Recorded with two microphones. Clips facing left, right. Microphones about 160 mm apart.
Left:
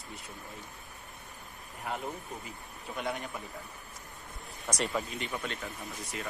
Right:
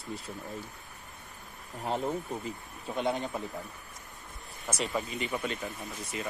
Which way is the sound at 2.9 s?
25° right (ahead or behind).